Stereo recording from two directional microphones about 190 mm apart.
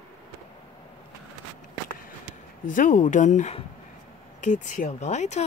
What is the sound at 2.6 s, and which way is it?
A woman's voice, 45° left (ahead or behind).